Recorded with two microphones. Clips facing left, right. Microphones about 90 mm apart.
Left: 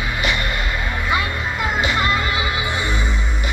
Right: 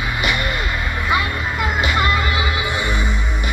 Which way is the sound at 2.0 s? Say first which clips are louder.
Right 1 dB; 30° left (ahead or behind).